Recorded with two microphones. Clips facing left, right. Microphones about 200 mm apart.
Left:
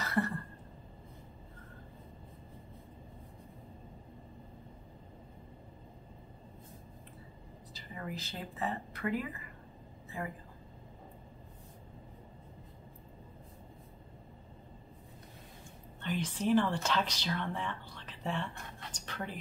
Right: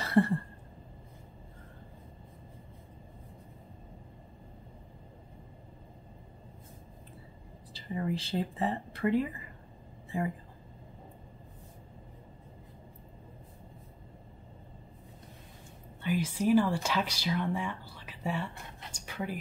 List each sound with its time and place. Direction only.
0.0 s a sound: 30° right (ahead or behind)
7.7 s speech: 30° right (ahead or behind)
16.0 s speech: 10° right (ahead or behind)